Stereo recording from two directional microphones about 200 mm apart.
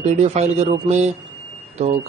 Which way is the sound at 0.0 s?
30° right (ahead or behind).